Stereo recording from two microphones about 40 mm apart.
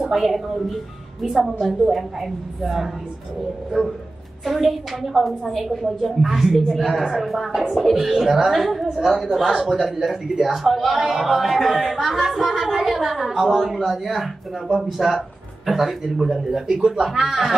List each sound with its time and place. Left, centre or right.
0.0 s a woman's voice: centre
4.5 s a woman's voice: centre